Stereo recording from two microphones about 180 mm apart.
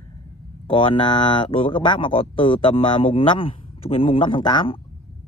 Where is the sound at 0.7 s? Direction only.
30° left (ahead or behind).